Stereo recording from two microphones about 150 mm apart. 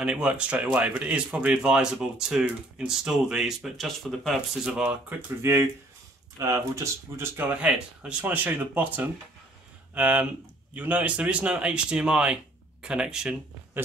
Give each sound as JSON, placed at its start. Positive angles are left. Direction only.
{"t": 0.0, "sound": "speech", "side_deg": -5}
{"t": 5.4, "sound": "speech", "side_deg": -15}